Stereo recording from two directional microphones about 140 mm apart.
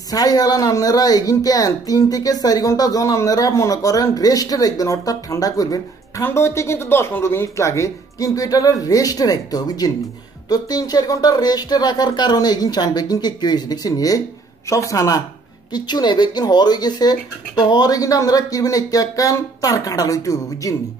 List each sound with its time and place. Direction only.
0.1 s speech: 25° left (ahead or behind)